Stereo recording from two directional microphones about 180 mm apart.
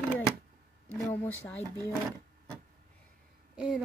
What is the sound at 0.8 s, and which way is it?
Speech, 10° left (ahead or behind).